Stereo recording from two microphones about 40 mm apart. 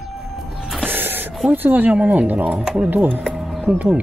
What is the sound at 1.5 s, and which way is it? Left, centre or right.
Speech, right.